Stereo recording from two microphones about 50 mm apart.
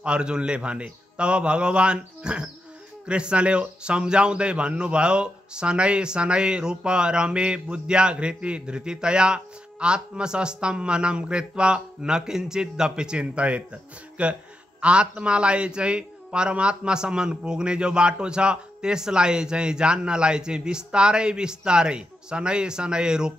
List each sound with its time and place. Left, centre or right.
0.0 s speech: centre